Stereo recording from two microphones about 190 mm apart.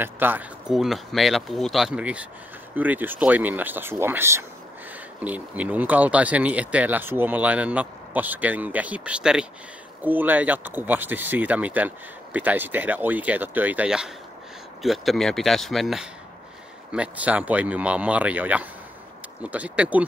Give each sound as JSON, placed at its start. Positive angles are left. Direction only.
{"t": 0.0, "sound": "speech", "side_deg": -10}